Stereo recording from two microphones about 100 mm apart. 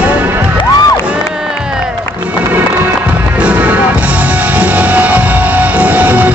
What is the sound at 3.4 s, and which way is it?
Music, 15° right (ahead or behind).